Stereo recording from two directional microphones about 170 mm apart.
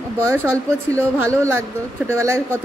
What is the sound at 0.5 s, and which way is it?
Speech, 15° right (ahead or behind).